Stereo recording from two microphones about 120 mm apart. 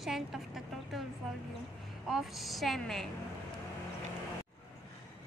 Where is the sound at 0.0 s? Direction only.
Centre (ahead or behind).